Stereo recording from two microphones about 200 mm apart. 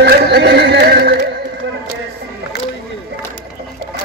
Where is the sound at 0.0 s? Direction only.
55° right (ahead or behind).